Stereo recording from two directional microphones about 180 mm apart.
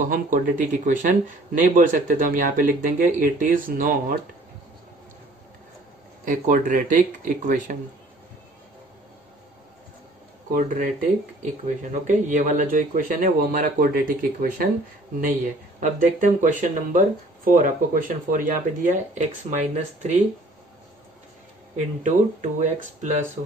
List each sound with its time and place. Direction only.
0.0 s speech: 50° right (ahead or behind)
6.2 s speech: 45° right (ahead or behind)
10.5 s speech: 50° right (ahead or behind)
15.8 s speech: 45° right (ahead or behind)
21.7 s speech: 40° right (ahead or behind)